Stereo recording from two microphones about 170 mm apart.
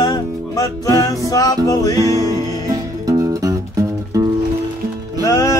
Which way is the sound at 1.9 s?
20° right (ahead or behind).